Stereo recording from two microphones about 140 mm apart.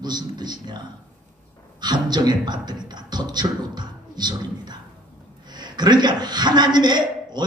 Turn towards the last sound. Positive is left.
turn(degrees=-30)  # may be behind; listen again after turning